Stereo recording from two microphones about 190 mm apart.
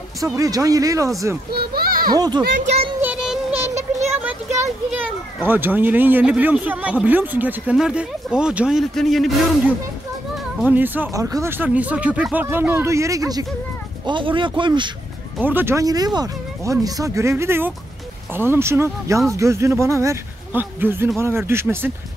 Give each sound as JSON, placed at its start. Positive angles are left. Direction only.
{"t": 0.2, "sound": "a child's voice", "side_deg": -20}
{"t": 1.5, "sound": "a child's voice", "side_deg": -55}
{"t": 2.1, "sound": "speech", "side_deg": -20}
{"t": 3.0, "sound": "child singing", "side_deg": -5}
{"t": 3.7, "sound": "a sound", "side_deg": -35}
{"t": 4.2, "sound": "a child's voice", "side_deg": -10}
{"t": 15.3, "sound": "a child's voice", "side_deg": -10}